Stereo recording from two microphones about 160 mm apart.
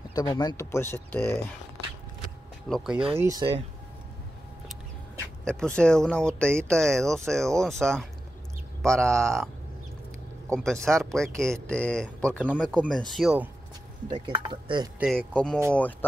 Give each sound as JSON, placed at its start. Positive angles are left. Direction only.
{"t": 0.1, "sound": "speech", "side_deg": 25}
{"t": 2.7, "sound": "speech", "side_deg": 0}
{"t": 3.2, "sound": "speech", "side_deg": -25}
{"t": 5.4, "sound": "speech", "side_deg": 5}
{"t": 10.5, "sound": "speech", "side_deg": 5}
{"t": 14.0, "sound": "speech", "side_deg": -30}
{"t": 15.0, "sound": "speech", "side_deg": 5}